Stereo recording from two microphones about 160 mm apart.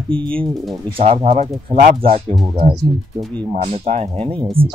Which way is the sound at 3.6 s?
40° right (ahead or behind).